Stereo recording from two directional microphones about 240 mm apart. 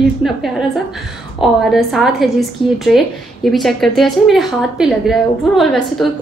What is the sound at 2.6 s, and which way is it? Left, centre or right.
Speech, left.